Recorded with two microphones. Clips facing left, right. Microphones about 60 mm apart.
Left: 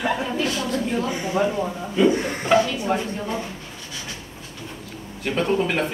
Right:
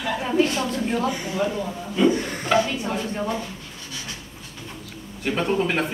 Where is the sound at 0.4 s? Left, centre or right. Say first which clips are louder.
Right 4 dB; right.